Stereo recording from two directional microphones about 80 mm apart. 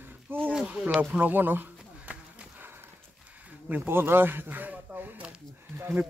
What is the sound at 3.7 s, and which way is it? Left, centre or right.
A man's voice, right.